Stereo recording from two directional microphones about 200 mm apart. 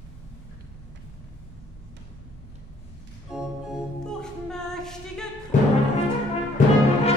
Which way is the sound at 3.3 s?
5° right (ahead or behind).